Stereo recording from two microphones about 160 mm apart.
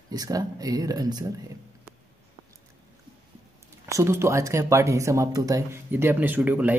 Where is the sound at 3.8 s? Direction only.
15° right (ahead or behind).